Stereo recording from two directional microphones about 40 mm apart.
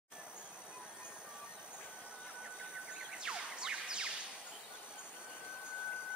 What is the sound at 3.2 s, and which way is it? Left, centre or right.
Music, centre.